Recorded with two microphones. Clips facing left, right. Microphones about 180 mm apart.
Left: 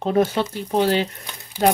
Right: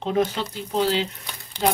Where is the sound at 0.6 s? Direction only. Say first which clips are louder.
Left 3 dB; 60° left (ahead or behind).